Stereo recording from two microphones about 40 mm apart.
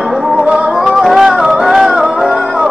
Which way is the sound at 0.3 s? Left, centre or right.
Centre.